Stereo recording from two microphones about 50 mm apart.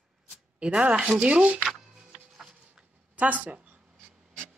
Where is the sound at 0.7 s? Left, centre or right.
Right.